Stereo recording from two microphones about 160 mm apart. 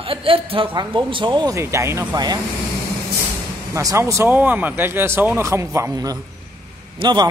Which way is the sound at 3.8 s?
20° right (ahead or behind).